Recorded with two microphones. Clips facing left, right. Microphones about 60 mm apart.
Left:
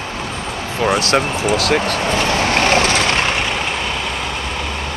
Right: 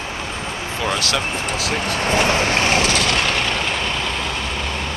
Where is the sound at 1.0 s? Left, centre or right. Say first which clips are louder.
Left 6 dB; left.